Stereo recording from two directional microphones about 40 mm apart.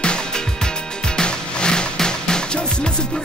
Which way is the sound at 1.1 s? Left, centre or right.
Left.